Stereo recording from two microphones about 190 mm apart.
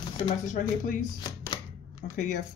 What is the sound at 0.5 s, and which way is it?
Speech, 45° left (ahead or behind).